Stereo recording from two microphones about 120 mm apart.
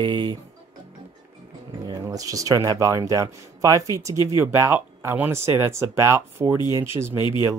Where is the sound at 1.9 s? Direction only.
30° right (ahead or behind).